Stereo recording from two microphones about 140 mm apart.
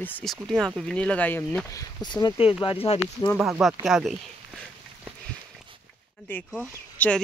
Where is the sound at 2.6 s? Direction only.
45° left (ahead or behind).